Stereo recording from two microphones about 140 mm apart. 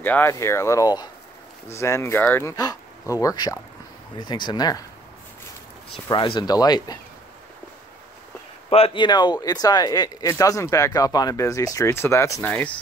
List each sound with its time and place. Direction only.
0.0 s speech: 15° left (ahead or behind)
2.5 s speech: 25° left (ahead or behind)
6.0 s speech: 35° left (ahead or behind)
8.6 s speech: 45° left (ahead or behind); by 12.4 s 20° left (ahead or behind)
12.4 s speech: 10° left (ahead or behind)